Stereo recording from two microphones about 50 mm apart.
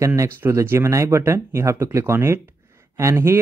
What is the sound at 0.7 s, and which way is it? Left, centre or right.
Speech, right.